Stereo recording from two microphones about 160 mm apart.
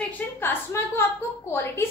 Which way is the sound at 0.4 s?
15° left (ahead or behind).